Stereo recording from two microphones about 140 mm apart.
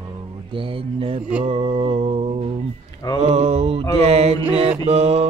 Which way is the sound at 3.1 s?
50° right (ahead or behind).